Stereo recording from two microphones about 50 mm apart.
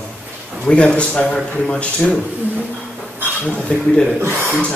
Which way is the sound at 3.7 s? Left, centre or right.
Centre.